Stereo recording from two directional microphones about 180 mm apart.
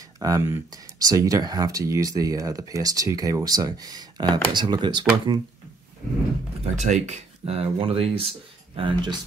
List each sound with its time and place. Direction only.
0.2 s speech: 15° right (ahead or behind)
6.6 s speech: 40° right (ahead or behind)